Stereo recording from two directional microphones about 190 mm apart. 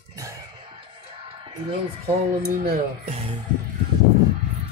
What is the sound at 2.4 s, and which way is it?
Speech, 50° right (ahead or behind).